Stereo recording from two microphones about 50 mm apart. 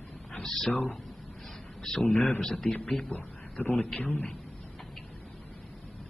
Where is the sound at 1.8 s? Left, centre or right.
Centre.